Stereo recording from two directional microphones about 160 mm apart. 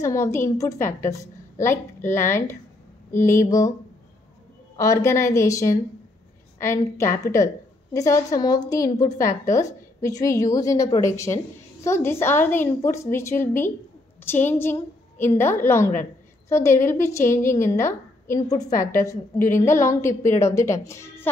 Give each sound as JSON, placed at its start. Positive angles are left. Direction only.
{"t": 0.0, "sound": "a woman's voice", "side_deg": 15}
{"t": 4.7, "sound": "a woman's voice", "side_deg": 20}